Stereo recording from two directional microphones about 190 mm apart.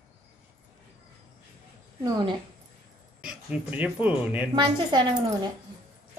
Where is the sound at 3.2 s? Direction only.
5° right (ahead or behind).